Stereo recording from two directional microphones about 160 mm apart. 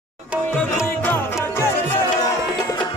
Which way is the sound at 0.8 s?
15° left (ahead or behind).